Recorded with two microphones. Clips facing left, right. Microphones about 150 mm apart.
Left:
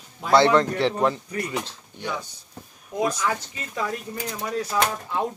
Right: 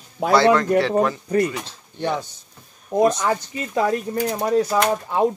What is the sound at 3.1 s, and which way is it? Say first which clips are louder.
Speech: right 5 dB; 30° right (ahead or behind).